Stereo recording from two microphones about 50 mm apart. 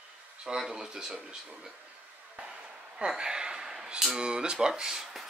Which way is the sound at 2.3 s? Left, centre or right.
Centre.